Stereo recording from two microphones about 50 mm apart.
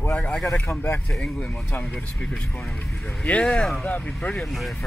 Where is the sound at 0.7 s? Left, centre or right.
Left.